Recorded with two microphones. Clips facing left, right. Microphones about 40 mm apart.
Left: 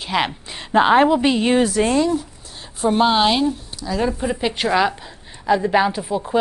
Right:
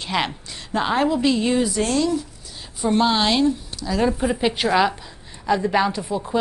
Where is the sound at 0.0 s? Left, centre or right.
Centre.